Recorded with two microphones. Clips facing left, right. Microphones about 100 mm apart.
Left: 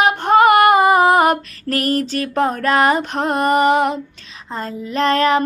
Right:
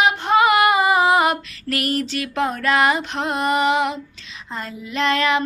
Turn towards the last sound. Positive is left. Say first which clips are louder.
# left 4 dB
turn(degrees=40)  # may be behind; listen again after turning